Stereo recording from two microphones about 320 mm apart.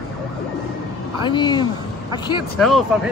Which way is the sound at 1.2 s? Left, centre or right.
Centre.